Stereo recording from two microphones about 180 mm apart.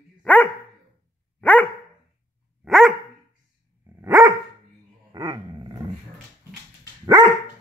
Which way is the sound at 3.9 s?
10° right (ahead or behind).